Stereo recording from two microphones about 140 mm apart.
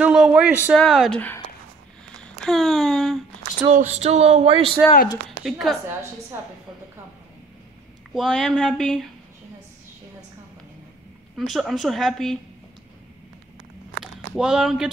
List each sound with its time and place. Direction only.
0.0 s a man's voice: 5° right (ahead or behind)
2.2 s a sound: centre (ahead or behind)
3.6 s a sound: 55° right (ahead or behind)
5.4 s a woman's voice: centre (ahead or behind)
8.1 s a woman's voice: centre (ahead or behind)
11.3 s a woman's voice: centre (ahead or behind)
14.3 s a woman's voice: 5° right (ahead or behind)